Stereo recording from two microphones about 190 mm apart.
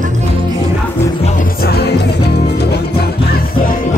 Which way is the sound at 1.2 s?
50° left (ahead or behind).